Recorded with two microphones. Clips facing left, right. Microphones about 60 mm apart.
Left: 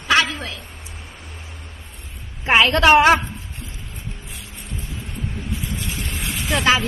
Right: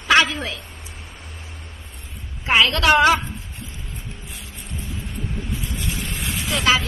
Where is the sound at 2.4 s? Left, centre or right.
Left.